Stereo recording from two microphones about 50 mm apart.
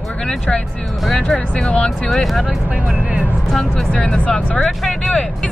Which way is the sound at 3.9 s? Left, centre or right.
Left.